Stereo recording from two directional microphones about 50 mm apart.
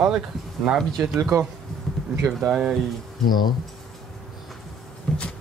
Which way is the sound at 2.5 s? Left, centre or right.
Centre.